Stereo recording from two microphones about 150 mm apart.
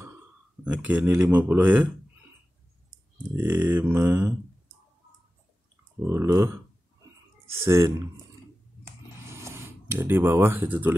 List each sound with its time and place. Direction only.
0.7 s speech: 10° right (ahead or behind)
3.3 s speech: 10° right (ahead or behind)
6.0 s speech: 20° right (ahead or behind)
7.6 s speech: 15° right (ahead or behind)
9.3 s speech: 20° right (ahead or behind)